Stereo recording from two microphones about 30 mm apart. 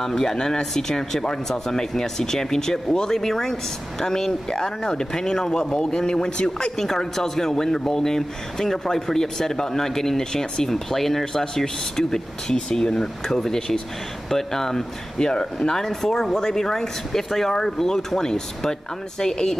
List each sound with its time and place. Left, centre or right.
0.0 s speech: centre
6.8 s speech: centre
12.9 s speech: centre